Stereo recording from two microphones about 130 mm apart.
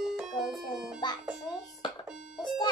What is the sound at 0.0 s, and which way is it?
Music, 5° right (ahead or behind).